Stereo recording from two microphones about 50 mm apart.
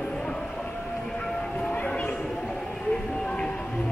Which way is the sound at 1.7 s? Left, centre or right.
Left.